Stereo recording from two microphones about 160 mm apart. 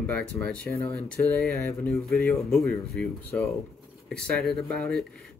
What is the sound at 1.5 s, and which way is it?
Speech, 20° left (ahead or behind).